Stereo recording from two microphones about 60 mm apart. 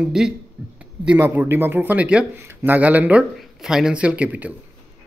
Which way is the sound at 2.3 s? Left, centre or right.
Right.